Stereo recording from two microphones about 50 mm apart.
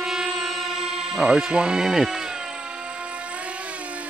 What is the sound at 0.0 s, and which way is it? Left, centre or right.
Music, centre.